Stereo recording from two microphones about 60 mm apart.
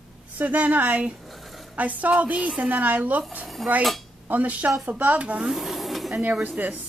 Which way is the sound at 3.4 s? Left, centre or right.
Centre.